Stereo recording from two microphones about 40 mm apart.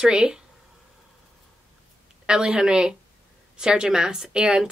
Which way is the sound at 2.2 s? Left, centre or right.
Centre.